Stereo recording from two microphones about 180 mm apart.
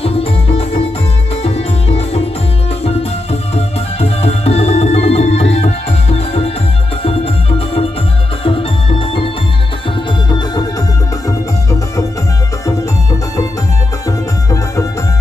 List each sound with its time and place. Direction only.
0.0 s music: 30° left (ahead or behind)
10.3 s music: 20° left (ahead or behind)